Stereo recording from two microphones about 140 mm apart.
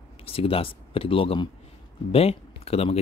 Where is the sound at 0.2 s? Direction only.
40° left (ahead or behind).